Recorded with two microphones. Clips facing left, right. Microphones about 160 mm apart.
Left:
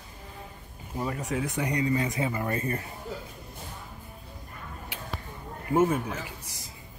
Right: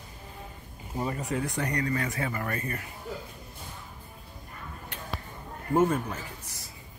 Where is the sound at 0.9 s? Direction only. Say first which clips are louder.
Even; 5° right (ahead or behind); by 2.8 s 25° left (ahead or behind).